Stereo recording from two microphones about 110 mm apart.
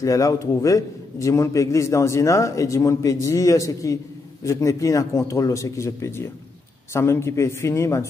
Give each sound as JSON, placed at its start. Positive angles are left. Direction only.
{"t": 0.0, "sound": "a man's voice", "side_deg": 30}